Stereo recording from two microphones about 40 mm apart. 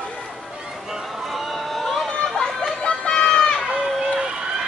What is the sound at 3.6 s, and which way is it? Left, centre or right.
Run, centre.